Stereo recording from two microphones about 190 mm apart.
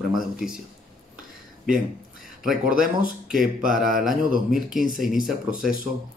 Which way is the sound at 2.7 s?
50° right (ahead or behind).